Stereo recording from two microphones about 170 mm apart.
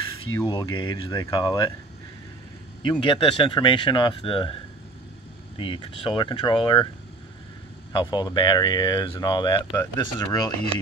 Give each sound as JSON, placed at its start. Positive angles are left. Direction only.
{"t": 0.5, "sound": "speech", "side_deg": 25}
{"t": 2.9, "sound": "speech", "side_deg": 30}
{"t": 5.6, "sound": "speech", "side_deg": 30}
{"t": 7.9, "sound": "speech", "side_deg": 25}